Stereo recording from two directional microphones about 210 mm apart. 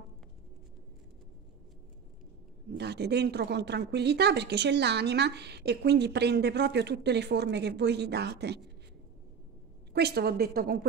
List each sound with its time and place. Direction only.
2.8 s a woman's voice: 50° right (ahead or behind)
9.9 s a woman's voice: 50° right (ahead or behind)